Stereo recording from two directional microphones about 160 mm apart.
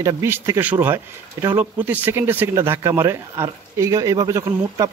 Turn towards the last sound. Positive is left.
turn(degrees=-20)  # may be behind; listen again after turning